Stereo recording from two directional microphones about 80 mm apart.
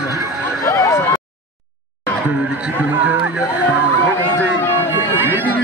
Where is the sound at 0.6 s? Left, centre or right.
Left.